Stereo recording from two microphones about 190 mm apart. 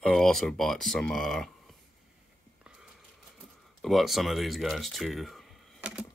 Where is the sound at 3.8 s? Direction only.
Centre (ahead or behind).